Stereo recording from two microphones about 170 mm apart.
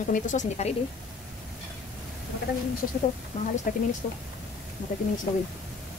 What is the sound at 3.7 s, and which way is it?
Speech, 55° left (ahead or behind).